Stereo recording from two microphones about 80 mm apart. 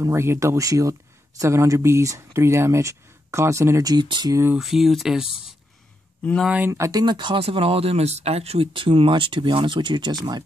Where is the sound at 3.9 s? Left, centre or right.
Right.